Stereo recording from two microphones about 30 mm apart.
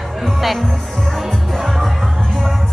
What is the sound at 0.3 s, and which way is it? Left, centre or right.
Music, centre.